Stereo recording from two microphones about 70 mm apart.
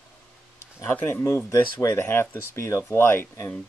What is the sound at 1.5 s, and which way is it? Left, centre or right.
Speech, left.